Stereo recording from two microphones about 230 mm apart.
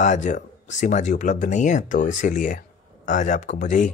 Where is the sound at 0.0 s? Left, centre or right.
Left.